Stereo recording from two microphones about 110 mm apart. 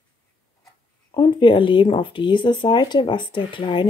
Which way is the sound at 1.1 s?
45° left (ahead or behind).